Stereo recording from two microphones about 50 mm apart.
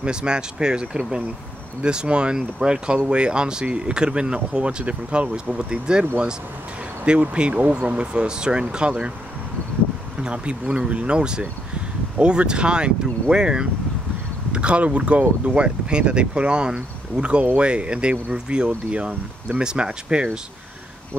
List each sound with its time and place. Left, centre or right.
0.0 s speech: centre
10.2 s speech: right